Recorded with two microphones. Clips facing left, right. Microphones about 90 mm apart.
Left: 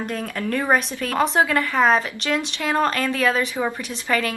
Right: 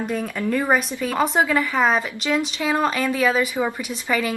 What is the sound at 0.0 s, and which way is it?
A woman's voice, 5° right (ahead or behind).